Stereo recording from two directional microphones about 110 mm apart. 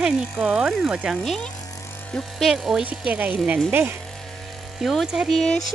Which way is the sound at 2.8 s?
15° right (ahead or behind).